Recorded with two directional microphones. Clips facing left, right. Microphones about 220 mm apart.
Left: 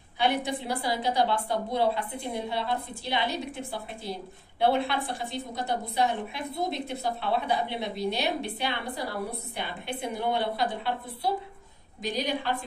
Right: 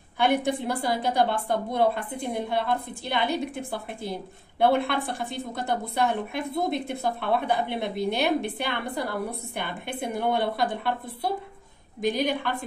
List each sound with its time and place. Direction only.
0.2 s a woman's voice: 50° right (ahead or behind)